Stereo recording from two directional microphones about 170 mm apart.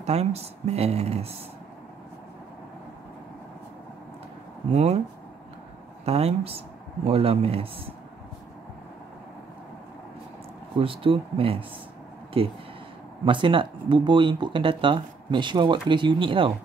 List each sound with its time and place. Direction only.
0.0 s speech: 40° right (ahead or behind)
4.7 s speech: 40° right (ahead or behind)
6.0 s speech: 35° right (ahead or behind)
10.8 s speech: 30° right (ahead or behind)